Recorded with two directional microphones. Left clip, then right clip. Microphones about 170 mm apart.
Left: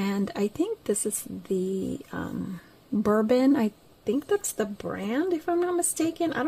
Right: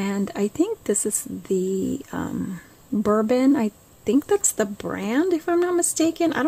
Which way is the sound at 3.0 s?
10° right (ahead or behind).